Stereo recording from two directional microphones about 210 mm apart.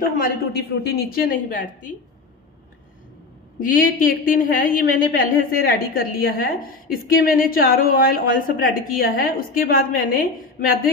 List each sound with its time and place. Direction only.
0.2 s a woman's voice: 50° left (ahead or behind)
1.5 s a woman's voice: 40° left (ahead or behind)
3.6 s a woman's voice: 40° left (ahead or behind)